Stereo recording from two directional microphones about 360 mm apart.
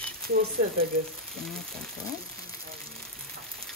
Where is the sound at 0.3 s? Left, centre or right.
Right.